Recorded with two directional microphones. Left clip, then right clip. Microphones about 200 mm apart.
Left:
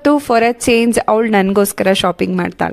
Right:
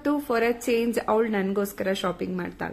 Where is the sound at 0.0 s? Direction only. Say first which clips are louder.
Left 12 dB; 50° left (ahead or behind).